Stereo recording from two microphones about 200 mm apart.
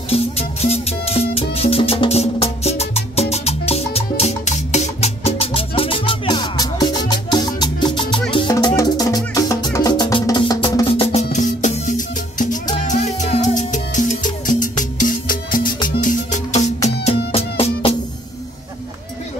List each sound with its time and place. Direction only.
0.1 s music: 30° left (ahead or behind)
11.3 s music: 40° left (ahead or behind)